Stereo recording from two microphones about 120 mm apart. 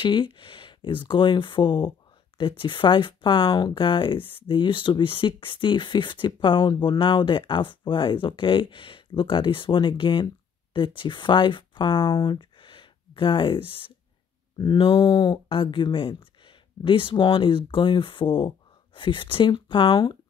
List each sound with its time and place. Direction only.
0.0 s speech: 45° left (ahead or behind)